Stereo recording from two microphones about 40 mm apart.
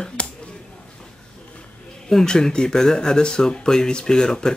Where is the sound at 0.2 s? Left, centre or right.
Left.